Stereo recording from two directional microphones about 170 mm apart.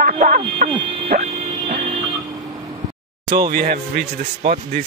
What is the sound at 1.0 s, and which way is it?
Music, 50° right (ahead or behind).